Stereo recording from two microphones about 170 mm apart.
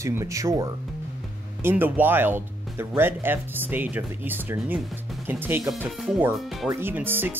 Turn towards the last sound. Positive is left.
turn(degrees=-10)  # may be behind; listen again after turning